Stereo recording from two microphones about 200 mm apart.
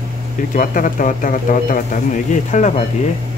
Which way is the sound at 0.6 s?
40° left (ahead or behind).